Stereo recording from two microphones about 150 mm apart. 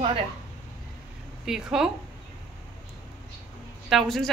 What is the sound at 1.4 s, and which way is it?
Speech, 5° right (ahead or behind).